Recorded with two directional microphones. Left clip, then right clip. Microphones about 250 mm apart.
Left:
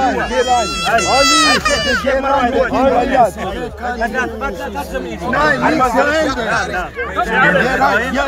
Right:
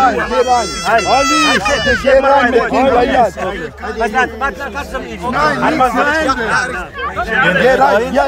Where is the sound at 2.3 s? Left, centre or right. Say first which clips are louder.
Right 4 dB; centre.